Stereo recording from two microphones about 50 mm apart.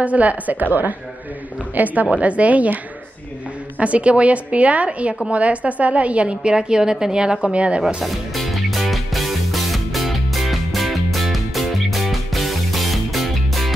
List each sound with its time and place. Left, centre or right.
0.0 s a woman's voice: right
3.8 s a woman's voice: right
8.0 s music: centre